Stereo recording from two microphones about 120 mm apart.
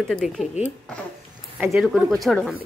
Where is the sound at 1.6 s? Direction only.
5° right (ahead or behind).